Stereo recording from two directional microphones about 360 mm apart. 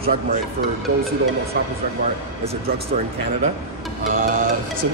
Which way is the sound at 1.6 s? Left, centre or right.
Right.